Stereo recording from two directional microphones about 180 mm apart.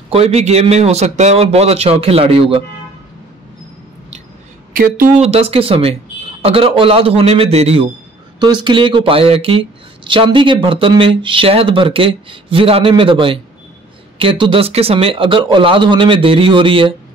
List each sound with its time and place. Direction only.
0.1 s a man's voice: 35° right (ahead or behind)
4.7 s a man's voice: 50° right (ahead or behind); by 16.9 s 30° right (ahead or behind)